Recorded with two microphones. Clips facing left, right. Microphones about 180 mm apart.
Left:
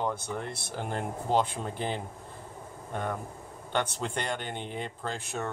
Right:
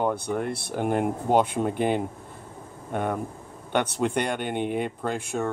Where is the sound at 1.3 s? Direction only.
55° right (ahead or behind).